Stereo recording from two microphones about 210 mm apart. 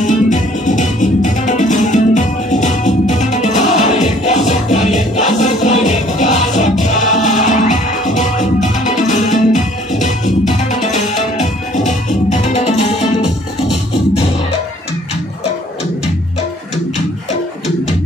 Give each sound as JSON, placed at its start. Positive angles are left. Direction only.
{"t": 0.0, "sound": "music", "side_deg": 35}